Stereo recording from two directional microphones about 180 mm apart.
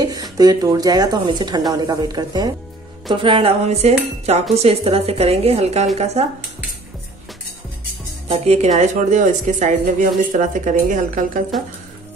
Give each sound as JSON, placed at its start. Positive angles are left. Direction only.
{"t": 0.0, "sound": "speech", "side_deg": -20}
{"t": 3.1, "sound": "cutlery", "side_deg": -30}
{"t": 8.3, "sound": "speech", "side_deg": -35}